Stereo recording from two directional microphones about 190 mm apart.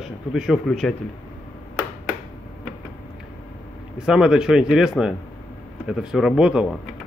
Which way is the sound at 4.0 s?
5° right (ahead or behind).